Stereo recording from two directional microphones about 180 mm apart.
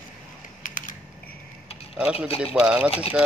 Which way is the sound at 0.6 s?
50° left (ahead or behind).